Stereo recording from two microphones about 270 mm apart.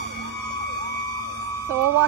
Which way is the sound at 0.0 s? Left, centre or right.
Left.